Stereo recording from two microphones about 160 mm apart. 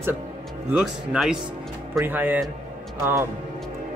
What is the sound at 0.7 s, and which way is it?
Speech, 5° right (ahead or behind).